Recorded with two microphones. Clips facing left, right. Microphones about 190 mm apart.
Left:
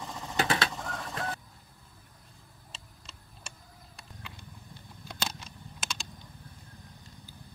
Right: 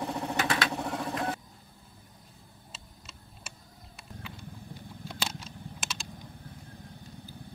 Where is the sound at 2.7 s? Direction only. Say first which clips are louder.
Even; 5° right (ahead or behind).